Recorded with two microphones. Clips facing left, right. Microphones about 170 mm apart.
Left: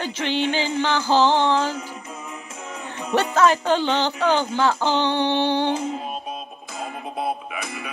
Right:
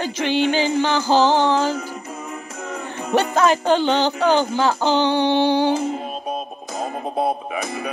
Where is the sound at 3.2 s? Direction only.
15° right (ahead or behind).